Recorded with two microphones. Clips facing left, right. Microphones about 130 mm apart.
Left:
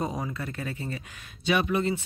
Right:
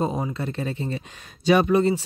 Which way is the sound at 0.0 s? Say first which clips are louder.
Right 6 dB; 25° right (ahead or behind).